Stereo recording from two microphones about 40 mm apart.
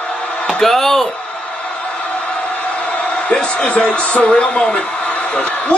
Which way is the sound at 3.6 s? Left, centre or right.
Left.